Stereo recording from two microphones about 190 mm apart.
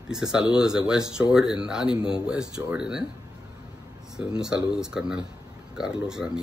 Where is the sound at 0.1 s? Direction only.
5° right (ahead or behind).